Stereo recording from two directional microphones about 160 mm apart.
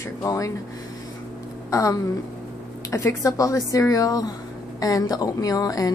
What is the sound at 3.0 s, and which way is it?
A woman's voice, 20° left (ahead or behind).